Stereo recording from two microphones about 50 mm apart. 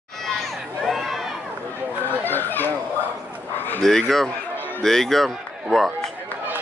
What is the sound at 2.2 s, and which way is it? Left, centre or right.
Speech, left.